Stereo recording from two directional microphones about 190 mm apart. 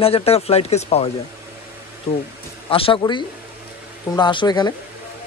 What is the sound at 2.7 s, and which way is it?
Speech, 25° left (ahead or behind).